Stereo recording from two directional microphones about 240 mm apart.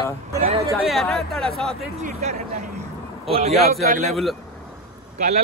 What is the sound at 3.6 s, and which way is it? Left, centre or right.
Speech, right.